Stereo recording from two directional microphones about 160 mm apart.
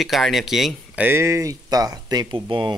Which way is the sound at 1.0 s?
15° right (ahead or behind).